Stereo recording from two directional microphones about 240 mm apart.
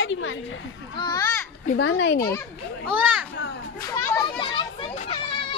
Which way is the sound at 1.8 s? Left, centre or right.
Left.